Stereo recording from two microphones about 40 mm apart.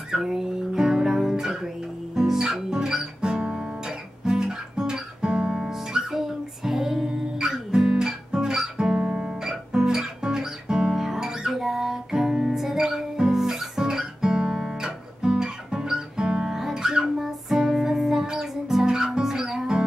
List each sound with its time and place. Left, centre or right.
0.1 s guitar: centre
17.2 s music: centre